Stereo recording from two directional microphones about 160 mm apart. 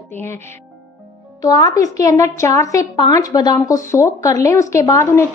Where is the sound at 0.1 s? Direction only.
15° left (ahead or behind).